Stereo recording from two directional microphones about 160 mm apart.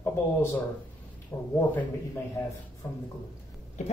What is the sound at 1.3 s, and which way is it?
Speech, 20° left (ahead or behind).